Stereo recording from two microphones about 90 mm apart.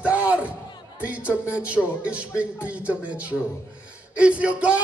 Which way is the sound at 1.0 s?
15° right (ahead or behind).